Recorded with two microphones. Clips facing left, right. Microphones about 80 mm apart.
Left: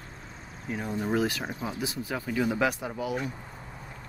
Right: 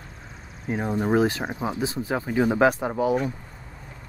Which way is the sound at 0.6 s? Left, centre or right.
Right.